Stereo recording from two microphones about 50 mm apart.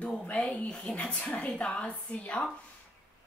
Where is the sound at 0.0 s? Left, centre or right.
Left.